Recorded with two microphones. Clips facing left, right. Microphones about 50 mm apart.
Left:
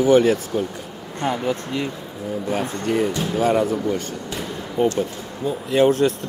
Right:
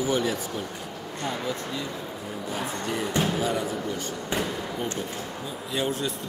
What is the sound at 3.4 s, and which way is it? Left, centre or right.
Speech, left.